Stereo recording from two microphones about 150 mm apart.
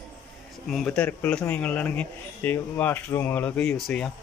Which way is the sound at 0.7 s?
5° left (ahead or behind).